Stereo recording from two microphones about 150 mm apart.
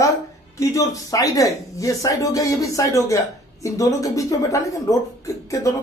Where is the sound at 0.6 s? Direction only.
20° left (ahead or behind).